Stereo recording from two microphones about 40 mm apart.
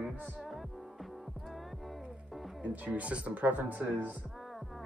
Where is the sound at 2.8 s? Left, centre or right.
Right.